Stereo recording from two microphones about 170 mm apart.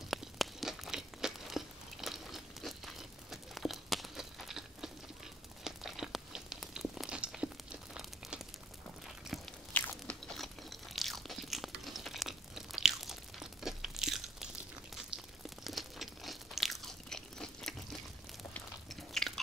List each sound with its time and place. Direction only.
0.1 s a sound: centre (ahead or behind)
9.8 s crunch: 5° left (ahead or behind)
15.6 s crunch: centre (ahead or behind)
18.5 s biting: centre (ahead or behind)